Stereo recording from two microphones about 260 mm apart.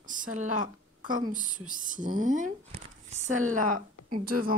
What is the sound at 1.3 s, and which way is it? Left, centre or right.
Speech, right.